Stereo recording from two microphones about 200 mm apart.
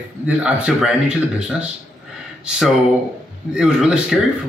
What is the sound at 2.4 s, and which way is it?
Speech, 5° right (ahead or behind).